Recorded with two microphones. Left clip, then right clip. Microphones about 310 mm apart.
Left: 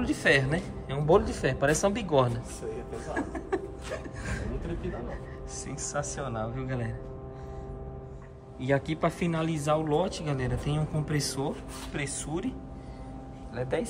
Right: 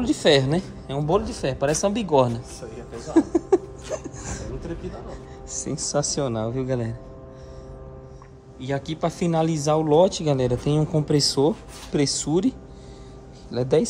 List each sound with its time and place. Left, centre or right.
0.0 s speech: centre
3.2 s a sound: centre
5.5 s speech: centre
8.5 s speech: centre
13.5 s a man's voice: right